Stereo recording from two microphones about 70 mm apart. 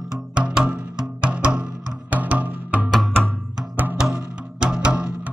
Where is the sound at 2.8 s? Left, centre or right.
Centre.